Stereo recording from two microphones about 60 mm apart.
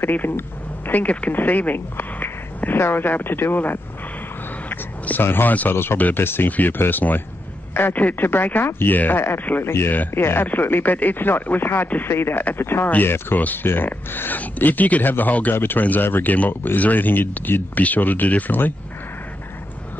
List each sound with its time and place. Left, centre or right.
0.0 s speech: left